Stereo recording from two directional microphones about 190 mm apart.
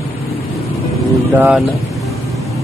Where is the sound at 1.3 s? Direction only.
10° right (ahead or behind).